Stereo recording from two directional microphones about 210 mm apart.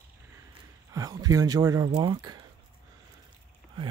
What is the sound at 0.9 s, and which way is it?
Speech, 20° right (ahead or behind).